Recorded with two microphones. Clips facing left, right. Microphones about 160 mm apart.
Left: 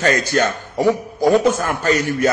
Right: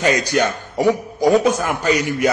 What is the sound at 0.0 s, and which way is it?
A man's voice, 15° right (ahead or behind).